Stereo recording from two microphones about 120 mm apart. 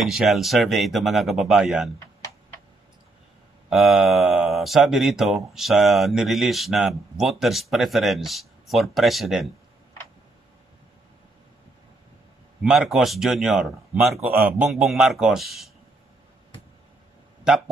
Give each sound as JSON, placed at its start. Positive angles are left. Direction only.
{"t": 0.0, "sound": "speech", "side_deg": 0}
{"t": 3.7, "sound": "speech", "side_deg": 0}
{"t": 12.6, "sound": "a man's voice", "side_deg": -5}